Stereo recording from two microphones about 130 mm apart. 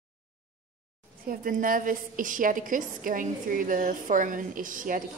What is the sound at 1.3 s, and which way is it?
A woman's voice, 90° right.